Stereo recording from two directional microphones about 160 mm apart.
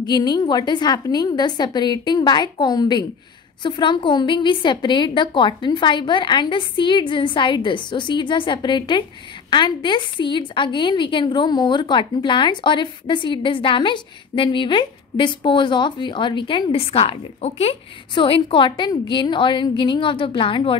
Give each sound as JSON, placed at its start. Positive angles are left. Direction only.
{"t": 0.0, "sound": "a woman's voice", "side_deg": 25}